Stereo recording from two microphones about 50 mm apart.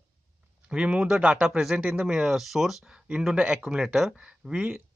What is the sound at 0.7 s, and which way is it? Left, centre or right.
Speech, centre.